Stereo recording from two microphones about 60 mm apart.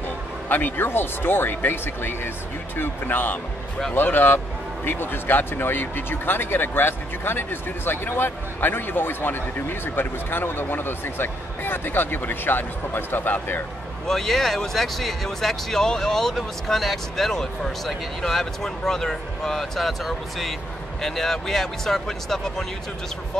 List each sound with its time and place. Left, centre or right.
0.5 s speech: left
14.0 s speech: centre